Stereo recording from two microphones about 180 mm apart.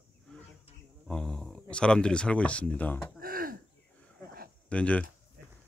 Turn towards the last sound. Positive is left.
turn(degrees=5)  # may be behind; listen again after turning